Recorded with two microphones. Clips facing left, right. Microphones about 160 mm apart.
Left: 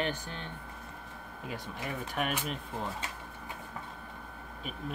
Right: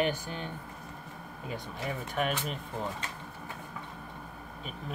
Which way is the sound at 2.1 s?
Centre (ahead or behind).